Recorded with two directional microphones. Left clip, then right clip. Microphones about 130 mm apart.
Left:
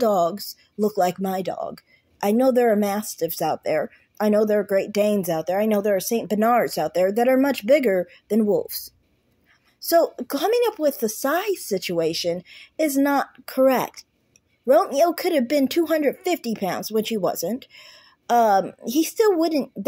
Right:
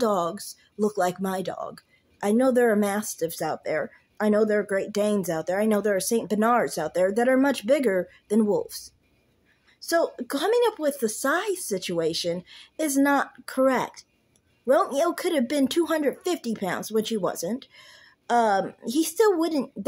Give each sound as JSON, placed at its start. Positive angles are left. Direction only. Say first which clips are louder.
{"t": 0.0, "sound": "speech", "louder": "left 5 dB", "side_deg": 10}
{"t": 3.4, "sound": "speech", "louder": "left 6 dB", "side_deg": 20}